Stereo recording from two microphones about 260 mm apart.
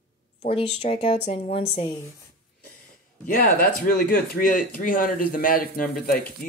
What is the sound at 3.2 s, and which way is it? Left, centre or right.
Speech, left.